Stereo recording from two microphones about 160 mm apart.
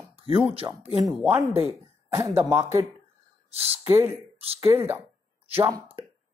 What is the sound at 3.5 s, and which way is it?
Speech, 40° right (ahead or behind).